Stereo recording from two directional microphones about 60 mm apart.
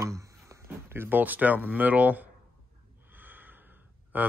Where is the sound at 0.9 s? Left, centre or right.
Right.